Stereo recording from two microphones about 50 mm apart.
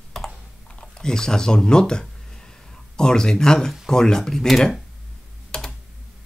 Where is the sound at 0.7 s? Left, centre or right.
Centre.